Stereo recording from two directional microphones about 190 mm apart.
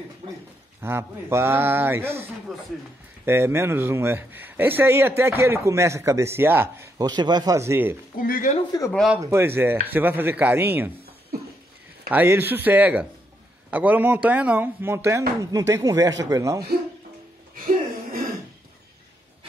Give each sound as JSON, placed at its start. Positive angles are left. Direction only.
{"t": 0.2, "sound": "a man's voice", "side_deg": -35}
{"t": 0.8, "sound": "speech", "side_deg": -15}
{"t": 2.5, "sound": "a man's voice", "side_deg": 0}
{"t": 3.3, "sound": "speech", "side_deg": -10}
{"t": 8.2, "sound": "speech", "side_deg": 45}
{"t": 8.9, "sound": "a man's voice", "side_deg": 0}
{"t": 9.2, "sound": "speech", "side_deg": -15}
{"t": 12.1, "sound": "a man's voice", "side_deg": -10}